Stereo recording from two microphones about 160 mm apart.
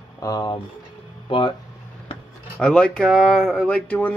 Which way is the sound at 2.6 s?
5° left (ahead or behind).